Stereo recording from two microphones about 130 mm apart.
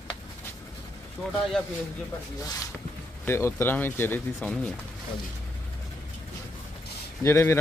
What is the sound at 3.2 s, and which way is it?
Speech, 20° left (ahead or behind).